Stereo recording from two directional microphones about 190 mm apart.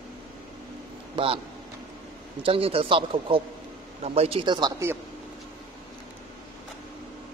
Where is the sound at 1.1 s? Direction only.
30° right (ahead or behind).